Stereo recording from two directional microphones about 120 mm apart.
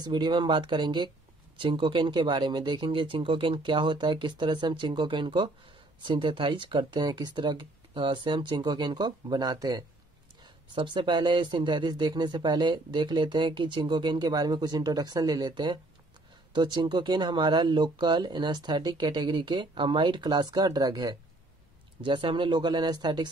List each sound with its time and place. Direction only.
0.0 s speech: 40° right (ahead or behind)
22.0 s speech: 45° right (ahead or behind)